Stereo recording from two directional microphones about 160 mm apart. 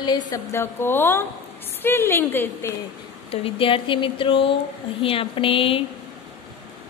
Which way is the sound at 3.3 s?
35° left (ahead or behind).